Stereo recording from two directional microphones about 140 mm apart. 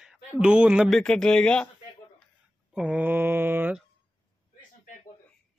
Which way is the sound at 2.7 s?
10° right (ahead or behind).